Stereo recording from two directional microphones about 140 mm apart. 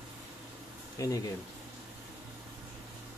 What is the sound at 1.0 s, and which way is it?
Speech, 25° left (ahead or behind).